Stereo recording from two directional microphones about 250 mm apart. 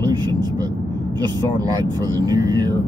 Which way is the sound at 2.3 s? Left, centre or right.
Centre.